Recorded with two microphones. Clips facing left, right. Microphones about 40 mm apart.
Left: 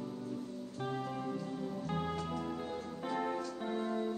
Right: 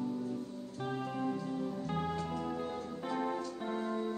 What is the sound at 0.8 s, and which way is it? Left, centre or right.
Music, centre.